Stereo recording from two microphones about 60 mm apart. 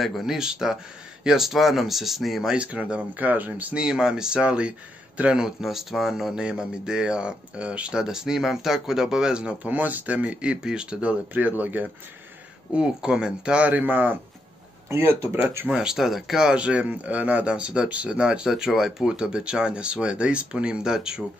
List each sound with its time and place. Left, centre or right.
0.0 s speech: centre
2.5 s speech: right
3.7 s speech: centre
5.4 s speech: centre; by 11.9 s right
12.7 s speech: centre; by 15.7 s right
15.7 s speech: centre
18.5 s speech: centre